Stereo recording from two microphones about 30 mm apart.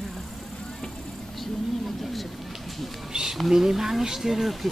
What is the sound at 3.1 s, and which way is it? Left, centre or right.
Speech, right.